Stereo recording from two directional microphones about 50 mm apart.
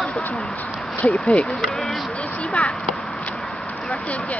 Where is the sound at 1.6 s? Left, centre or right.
Centre.